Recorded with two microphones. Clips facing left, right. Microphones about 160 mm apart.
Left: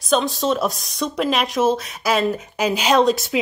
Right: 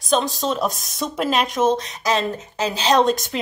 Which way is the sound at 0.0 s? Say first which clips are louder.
Left 1 dB; centre (ahead or behind).